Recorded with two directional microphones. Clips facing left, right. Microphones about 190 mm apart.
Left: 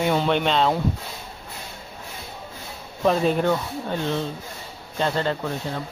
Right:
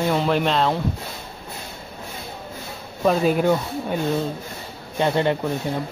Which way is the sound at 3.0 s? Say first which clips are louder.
Right 2 dB; 5° right (ahead or behind).